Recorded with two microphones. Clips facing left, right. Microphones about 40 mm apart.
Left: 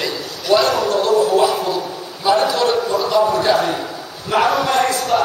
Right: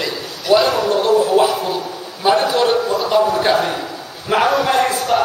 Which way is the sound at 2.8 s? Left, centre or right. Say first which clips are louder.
Even; centre.